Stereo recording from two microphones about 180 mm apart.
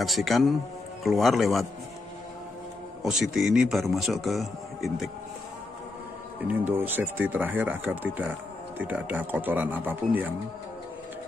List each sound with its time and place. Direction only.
0.0 s speech: centre (ahead or behind)
3.0 s speech: centre (ahead or behind)
6.4 s speech: 10° right (ahead or behind)